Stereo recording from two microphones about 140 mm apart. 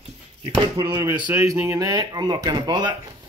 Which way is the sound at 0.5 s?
30° right (ahead or behind).